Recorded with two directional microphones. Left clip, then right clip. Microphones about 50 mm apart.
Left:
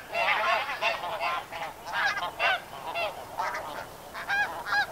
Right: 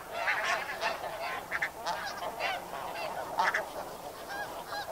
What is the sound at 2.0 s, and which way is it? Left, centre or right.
Goose, left.